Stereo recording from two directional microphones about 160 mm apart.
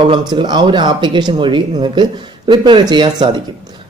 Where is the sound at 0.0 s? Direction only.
30° right (ahead or behind).